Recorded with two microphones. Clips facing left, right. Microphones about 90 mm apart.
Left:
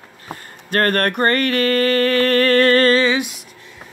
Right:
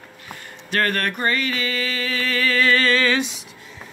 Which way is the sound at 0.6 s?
50° left (ahead or behind).